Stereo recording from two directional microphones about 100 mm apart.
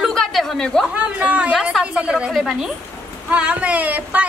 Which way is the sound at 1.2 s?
10° right (ahead or behind).